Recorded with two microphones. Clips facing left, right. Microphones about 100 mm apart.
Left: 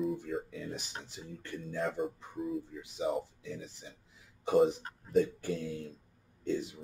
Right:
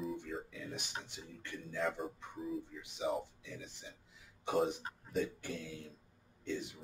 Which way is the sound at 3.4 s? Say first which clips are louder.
Left 6 dB; 40° left (ahead or behind).